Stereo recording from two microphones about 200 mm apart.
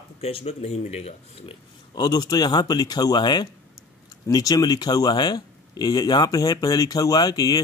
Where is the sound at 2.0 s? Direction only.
20° left (ahead or behind).